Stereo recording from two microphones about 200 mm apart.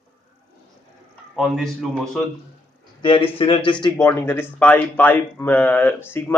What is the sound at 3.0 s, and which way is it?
Speech, 25° left (ahead or behind).